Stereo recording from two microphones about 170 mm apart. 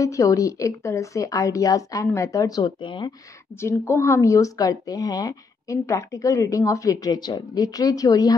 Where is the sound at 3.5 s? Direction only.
15° left (ahead or behind).